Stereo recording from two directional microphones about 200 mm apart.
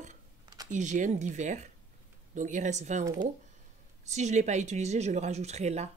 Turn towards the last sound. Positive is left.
turn(degrees=-35)  # may be behind; listen again after turning